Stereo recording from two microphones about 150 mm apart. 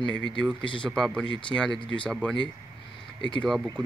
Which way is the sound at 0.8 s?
5° left (ahead or behind).